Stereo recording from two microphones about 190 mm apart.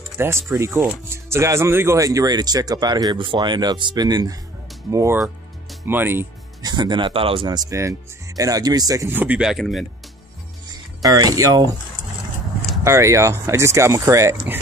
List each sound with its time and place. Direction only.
0.2 s speech: 15° right (ahead or behind)
6.7 s speech: 25° right (ahead or behind); by 9.8 s centre (ahead or behind)
11.0 s speech: 20° right (ahead or behind)
12.8 s speech: 15° right (ahead or behind)